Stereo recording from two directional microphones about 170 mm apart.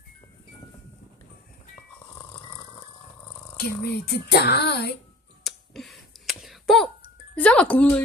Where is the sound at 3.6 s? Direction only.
65° left (ahead or behind).